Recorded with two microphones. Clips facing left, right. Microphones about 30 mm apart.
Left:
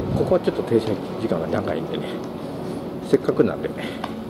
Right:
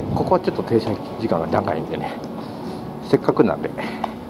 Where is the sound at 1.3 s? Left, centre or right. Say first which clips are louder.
Right 4 dB; right.